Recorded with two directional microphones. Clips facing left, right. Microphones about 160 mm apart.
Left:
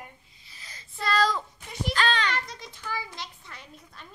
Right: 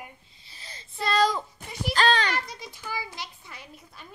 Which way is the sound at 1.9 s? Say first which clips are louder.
Right 4 dB; 35° right (ahead or behind).